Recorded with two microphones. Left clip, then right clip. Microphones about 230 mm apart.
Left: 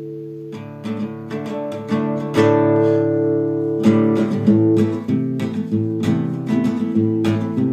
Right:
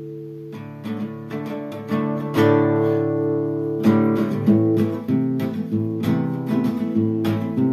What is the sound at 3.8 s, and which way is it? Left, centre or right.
Music, centre.